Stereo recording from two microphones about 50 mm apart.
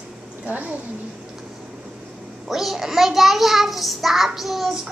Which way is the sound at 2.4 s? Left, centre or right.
Centre.